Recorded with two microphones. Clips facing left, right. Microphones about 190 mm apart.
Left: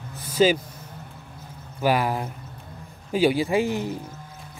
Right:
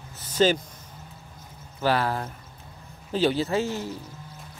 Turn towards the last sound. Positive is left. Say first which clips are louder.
# left 3 dB
turn(degrees=15)  # may be behind; listen again after turning